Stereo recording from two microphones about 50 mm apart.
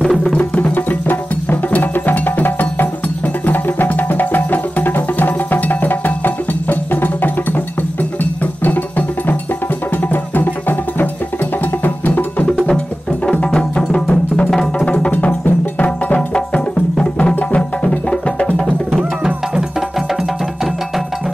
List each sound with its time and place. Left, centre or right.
0.0 s music: centre
0.3 s music: left
0.7 s music: left
12.6 s music: centre
14.9 s music: left
16.2 s music: centre